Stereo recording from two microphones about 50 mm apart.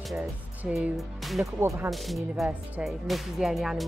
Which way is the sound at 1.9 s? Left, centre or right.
Centre.